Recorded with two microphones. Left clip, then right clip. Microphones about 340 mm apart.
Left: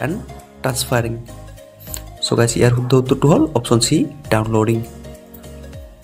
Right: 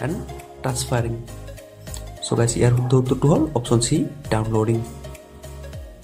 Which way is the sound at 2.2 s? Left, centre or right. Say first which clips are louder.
Left 5 dB; centre.